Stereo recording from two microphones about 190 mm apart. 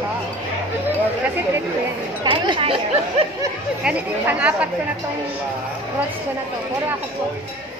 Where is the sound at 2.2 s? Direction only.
25° right (ahead or behind).